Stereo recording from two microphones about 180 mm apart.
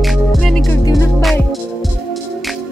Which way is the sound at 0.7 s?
20° left (ahead or behind).